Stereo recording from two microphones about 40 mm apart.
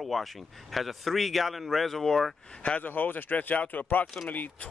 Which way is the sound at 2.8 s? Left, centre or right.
Left.